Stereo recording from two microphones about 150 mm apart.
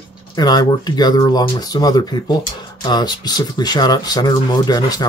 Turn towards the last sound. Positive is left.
turn(degrees=25)  # may be behind; listen again after turning